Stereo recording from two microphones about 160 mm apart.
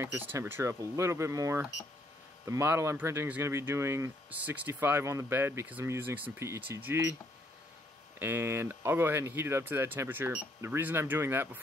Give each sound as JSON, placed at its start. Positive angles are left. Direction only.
{"t": 0.0, "sound": "speech", "side_deg": -15}
{"t": 8.2, "sound": "speech", "side_deg": -15}